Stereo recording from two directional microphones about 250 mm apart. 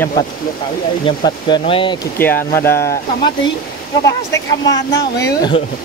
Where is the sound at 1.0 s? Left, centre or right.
Centre.